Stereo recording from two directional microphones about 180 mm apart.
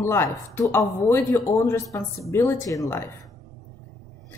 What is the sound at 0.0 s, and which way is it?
Speech, 15° left (ahead or behind).